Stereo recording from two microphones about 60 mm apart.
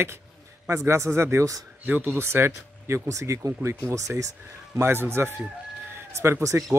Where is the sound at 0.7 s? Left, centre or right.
Right.